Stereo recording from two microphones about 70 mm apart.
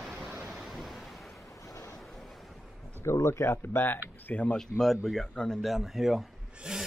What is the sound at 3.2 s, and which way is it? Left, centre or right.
Speech, left.